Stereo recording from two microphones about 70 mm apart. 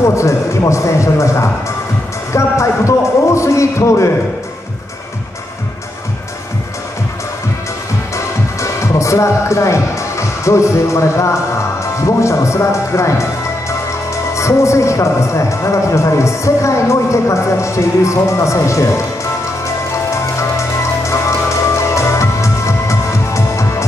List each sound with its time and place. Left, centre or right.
0.0 s a man's voice: left
2.3 s a sound: left
8.5 s speech: left
19.9 s music: left